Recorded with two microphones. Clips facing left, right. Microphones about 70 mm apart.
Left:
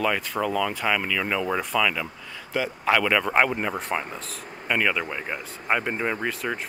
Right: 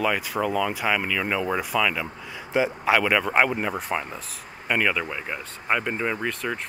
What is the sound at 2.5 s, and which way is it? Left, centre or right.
Speech, centre.